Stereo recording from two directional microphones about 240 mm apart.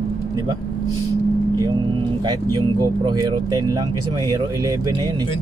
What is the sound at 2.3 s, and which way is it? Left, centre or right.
Speech, centre.